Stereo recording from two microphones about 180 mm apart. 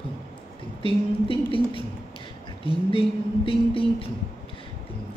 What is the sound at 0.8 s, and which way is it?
Music, 30° left (ahead or behind).